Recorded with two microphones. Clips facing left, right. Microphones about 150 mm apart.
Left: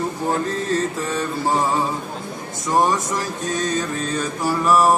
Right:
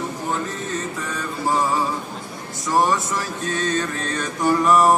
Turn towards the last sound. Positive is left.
turn(degrees=5)  # may be behind; listen again after turning